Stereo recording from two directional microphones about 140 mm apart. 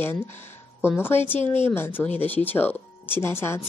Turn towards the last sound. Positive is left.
turn(degrees=15)  # may be behind; listen again after turning